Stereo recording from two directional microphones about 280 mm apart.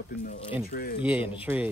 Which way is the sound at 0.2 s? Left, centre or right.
Left.